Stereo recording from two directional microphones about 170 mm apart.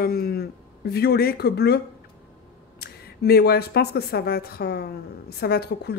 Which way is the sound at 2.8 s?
70° left (ahead or behind).